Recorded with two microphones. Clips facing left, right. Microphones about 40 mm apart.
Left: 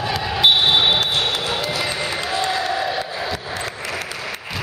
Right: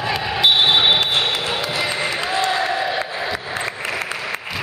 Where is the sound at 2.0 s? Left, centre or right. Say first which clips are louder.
Right 2 dB; right.